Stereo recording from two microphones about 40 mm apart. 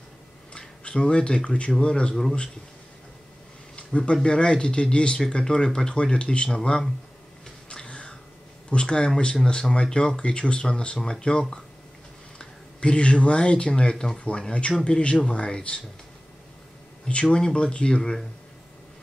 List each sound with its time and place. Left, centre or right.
0.5 s speech: left
3.7 s speech: left
7.8 s a sound: left
8.6 s speech: left
17.1 s speech: left